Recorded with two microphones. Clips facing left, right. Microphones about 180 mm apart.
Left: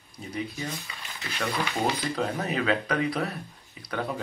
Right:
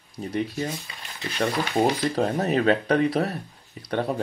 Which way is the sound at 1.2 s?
35° right (ahead or behind).